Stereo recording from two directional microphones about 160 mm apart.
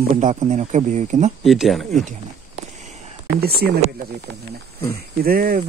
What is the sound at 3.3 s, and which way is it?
Speech, 75° right (ahead or behind).